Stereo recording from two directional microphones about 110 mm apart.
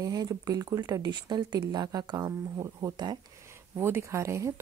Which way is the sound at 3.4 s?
25° right (ahead or behind).